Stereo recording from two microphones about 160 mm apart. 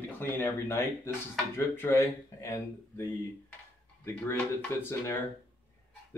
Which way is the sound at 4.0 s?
15° left (ahead or behind).